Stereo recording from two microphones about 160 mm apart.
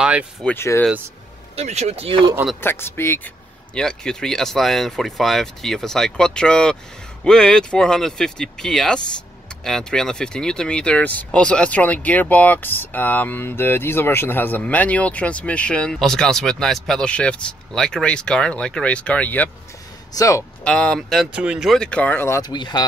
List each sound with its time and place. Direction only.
0.0 s a sound: 5° right (ahead or behind)
0.4 s speech: 10° left (ahead or behind)
1.6 s speech: 45° right (ahead or behind)
2.6 s speech: 15° left (ahead or behind)
3.7 s speech: 5° left (ahead or behind); by 20.4 s 20° left (ahead or behind)
20.6 s speech: 5° left (ahead or behind); by 22.8 s 25° left (ahead or behind)